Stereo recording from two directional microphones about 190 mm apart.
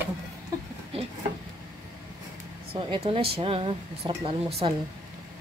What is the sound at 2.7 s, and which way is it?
Speech, 30° right (ahead or behind).